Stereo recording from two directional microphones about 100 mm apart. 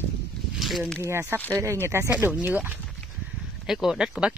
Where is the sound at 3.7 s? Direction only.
5° right (ahead or behind).